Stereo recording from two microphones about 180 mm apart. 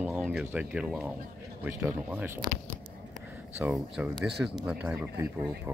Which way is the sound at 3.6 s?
5° right (ahead or behind).